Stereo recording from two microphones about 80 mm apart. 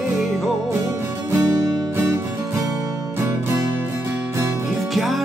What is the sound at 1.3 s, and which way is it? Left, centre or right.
Music, right.